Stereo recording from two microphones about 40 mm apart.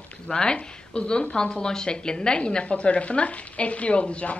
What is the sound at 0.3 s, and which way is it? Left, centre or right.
A woman's voice, centre.